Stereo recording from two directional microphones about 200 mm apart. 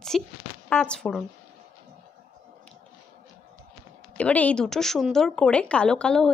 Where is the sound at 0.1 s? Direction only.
Centre (ahead or behind).